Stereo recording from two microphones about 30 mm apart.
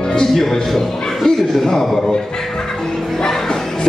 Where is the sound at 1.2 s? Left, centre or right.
Centre.